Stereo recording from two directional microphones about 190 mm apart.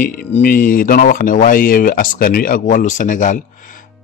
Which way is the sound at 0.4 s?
50° left (ahead or behind).